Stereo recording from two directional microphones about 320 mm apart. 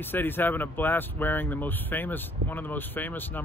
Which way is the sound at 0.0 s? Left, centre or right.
Centre.